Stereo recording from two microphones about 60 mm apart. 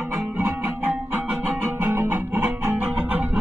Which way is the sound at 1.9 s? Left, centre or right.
Right.